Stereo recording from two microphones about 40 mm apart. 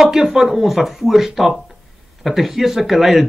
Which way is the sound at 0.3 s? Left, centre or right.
Centre.